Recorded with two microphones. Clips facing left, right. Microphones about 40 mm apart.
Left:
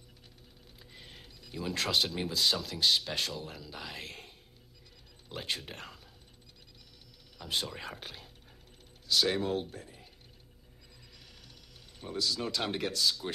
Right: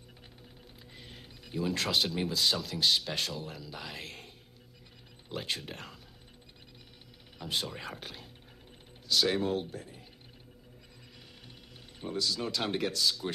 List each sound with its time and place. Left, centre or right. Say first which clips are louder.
0.9 s music: right 1 dB; centre
1.6 s speech: right 1 dB; centre
5.3 s speech: right 1 dB; centre
7.4 s speech: even; centre
12.2 s speech: even; centre